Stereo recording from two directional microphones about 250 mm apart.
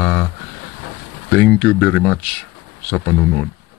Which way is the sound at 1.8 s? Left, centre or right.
Centre.